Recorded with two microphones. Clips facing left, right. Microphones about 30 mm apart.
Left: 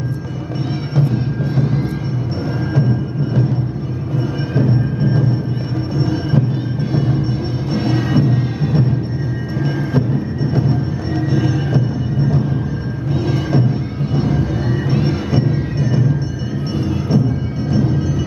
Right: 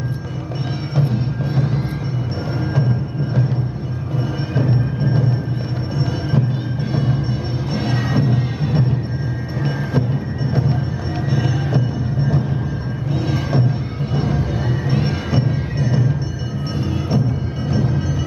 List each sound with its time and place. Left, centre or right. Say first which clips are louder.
0.9 s music: left 2 dB; centre
4.6 s music: left 3 dB; centre
13.1 s music: left 3 dB; centre
17.1 s music: left 4 dB; centre